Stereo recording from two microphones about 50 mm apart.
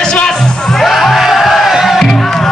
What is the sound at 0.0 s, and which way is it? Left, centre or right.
Music, centre.